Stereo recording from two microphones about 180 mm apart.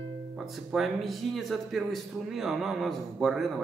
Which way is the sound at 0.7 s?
Centre (ahead or behind).